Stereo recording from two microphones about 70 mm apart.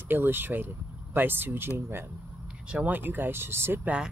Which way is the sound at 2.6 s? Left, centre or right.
Right.